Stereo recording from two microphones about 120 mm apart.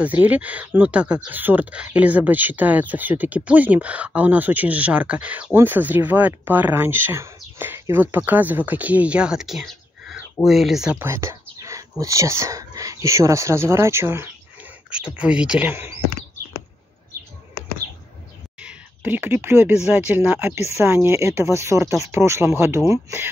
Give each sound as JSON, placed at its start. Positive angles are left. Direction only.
{"t": 0.0, "sound": "speech", "side_deg": -15}
{"t": 11.0, "sound": "speech", "side_deg": -20}
{"t": 15.1, "sound": "speech", "side_deg": -10}
{"t": 15.7, "sound": "speech", "side_deg": -20}
{"t": 18.6, "sound": "a sound", "side_deg": -10}
{"t": 19.9, "sound": "speech", "side_deg": -15}